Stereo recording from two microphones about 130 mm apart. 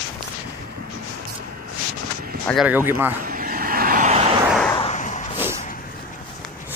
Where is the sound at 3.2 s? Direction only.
90° right.